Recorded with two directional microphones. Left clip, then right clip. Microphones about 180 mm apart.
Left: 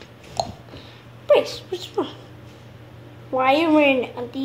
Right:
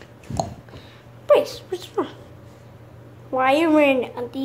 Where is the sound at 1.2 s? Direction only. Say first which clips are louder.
Even; 5° right (ahead or behind).